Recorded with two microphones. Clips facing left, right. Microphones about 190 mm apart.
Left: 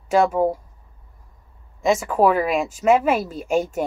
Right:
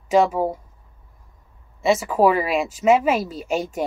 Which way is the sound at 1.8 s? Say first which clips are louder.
Even; 5° right (ahead or behind).